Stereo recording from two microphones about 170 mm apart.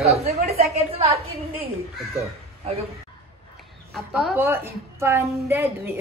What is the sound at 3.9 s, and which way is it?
A woman's voice, 5° right (ahead or behind).